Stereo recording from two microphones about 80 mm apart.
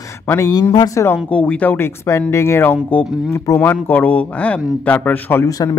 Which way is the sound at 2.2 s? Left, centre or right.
Left.